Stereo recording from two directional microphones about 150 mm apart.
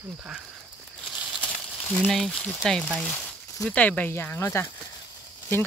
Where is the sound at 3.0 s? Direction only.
15° left (ahead or behind).